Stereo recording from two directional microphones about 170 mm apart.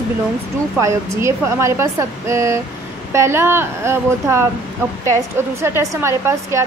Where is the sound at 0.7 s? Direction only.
20° right (ahead or behind).